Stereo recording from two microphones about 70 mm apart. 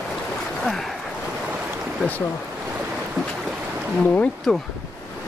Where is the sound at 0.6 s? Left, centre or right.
Centre.